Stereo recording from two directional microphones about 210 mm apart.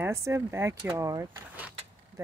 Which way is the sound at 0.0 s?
15° right (ahead or behind).